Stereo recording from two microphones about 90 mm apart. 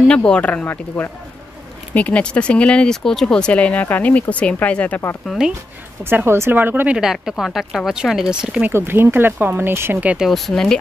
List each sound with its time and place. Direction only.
0.1 s speech: 10° left (ahead or behind)
5.2 s speech: 5° left (ahead or behind)
6.0 s speech: 25° right (ahead or behind)
7.0 s speech: 5° right (ahead or behind)
8.6 s speech: 25° right (ahead or behind)
10.0 s speech: 5° right (ahead or behind)